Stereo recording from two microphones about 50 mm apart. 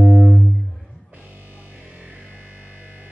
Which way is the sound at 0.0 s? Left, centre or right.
Centre.